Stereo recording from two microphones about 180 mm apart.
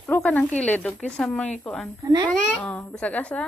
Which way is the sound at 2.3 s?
5° left (ahead or behind).